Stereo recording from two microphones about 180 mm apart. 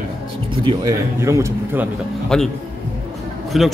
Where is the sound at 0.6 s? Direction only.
25° right (ahead or behind).